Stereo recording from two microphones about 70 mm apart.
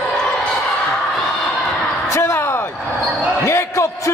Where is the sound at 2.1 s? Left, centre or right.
Left.